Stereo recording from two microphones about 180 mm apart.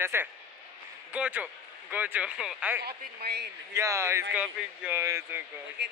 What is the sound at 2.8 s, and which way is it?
Speech, 60° right (ahead or behind).